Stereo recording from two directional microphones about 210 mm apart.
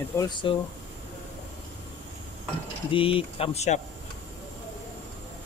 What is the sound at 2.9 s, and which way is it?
Speech, 25° left (ahead or behind).